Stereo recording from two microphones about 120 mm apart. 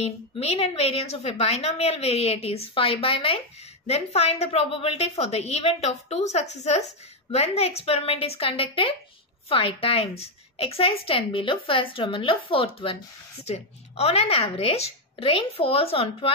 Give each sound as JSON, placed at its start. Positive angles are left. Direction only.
{"t": 0.0, "sound": "a woman's voice", "side_deg": 55}
{"t": 13.5, "sound": "a woman's voice", "side_deg": 60}